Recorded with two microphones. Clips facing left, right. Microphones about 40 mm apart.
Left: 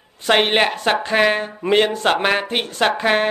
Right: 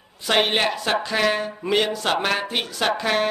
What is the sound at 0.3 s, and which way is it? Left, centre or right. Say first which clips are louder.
A woman's voice: left 4 dB; left.